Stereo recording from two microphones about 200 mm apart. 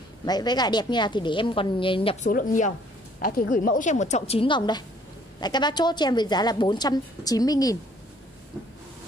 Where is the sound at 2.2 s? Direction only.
40° left (ahead or behind); by 7.7 s 20° left (ahead or behind).